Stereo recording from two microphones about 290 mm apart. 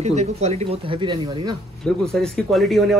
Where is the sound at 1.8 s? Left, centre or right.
Centre.